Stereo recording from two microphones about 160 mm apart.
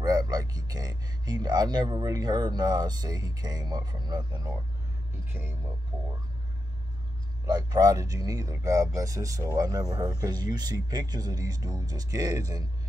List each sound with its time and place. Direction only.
0.0 s speech: 25° right (ahead or behind)
5.2 s speech: 15° right (ahead or behind)
7.4 s speech: 25° right (ahead or behind)